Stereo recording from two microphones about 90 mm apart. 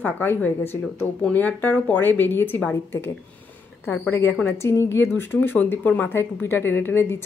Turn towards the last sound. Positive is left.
turn(degrees=25)  # may be behind; listen again after turning